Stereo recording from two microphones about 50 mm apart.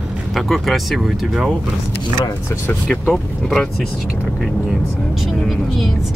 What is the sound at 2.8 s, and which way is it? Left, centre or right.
Speech, centre.